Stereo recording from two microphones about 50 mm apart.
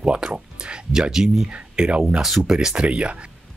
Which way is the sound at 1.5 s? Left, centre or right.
Right.